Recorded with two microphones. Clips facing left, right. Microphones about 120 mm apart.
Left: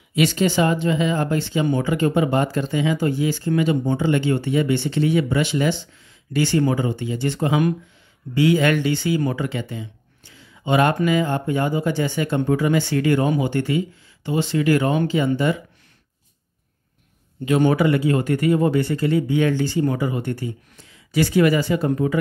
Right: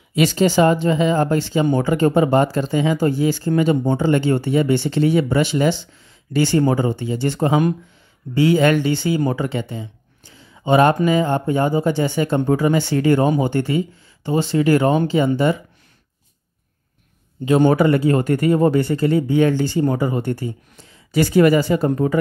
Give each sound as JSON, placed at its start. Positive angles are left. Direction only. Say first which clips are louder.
{"t": 0.1, "sound": "speech", "louder": "right 3 dB", "side_deg": -35}
{"t": 17.5, "sound": "speech", "louder": "right 3 dB", "side_deg": -35}